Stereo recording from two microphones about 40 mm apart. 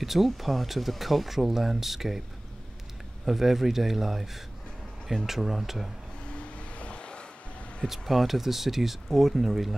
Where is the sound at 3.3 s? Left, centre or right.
Centre.